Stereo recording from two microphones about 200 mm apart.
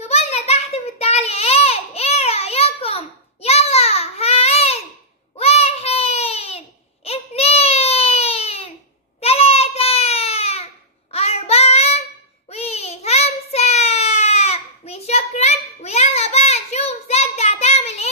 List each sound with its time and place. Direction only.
0.0 s child singing: 30° left (ahead or behind)
3.4 s a sound: 30° left (ahead or behind)
5.4 s child singing: 30° left (ahead or behind)
7.1 s baby cry: 30° left (ahead or behind)
9.2 s a sound: 30° left (ahead or behind)
12.4 s child singing: 30° left (ahead or behind)